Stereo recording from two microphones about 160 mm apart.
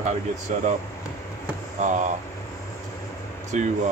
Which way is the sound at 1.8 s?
50° right (ahead or behind).